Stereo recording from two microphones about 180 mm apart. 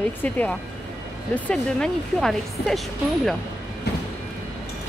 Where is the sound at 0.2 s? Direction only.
10° left (ahead or behind).